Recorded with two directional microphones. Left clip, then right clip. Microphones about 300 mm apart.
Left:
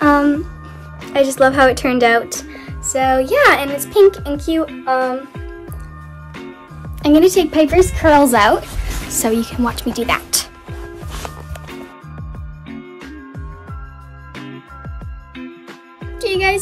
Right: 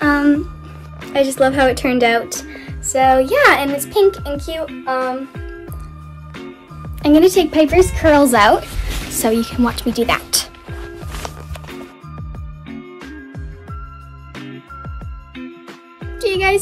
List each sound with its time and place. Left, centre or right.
0.0 s music: centre
1.1 s a woman's voice: centre
6.3 s music: centre
7.9 s a woman's voice: centre
11.1 s music: centre
14.3 s music: centre
16.0 s music: centre